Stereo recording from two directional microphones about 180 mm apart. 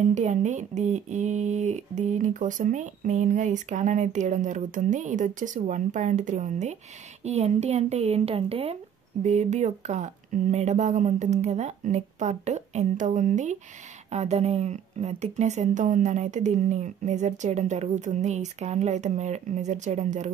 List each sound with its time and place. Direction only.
0.1 s speech: 40° right (ahead or behind)